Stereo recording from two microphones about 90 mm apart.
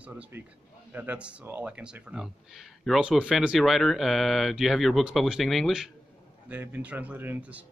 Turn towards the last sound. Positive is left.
turn(degrees=-15)  # may be behind; listen again after turning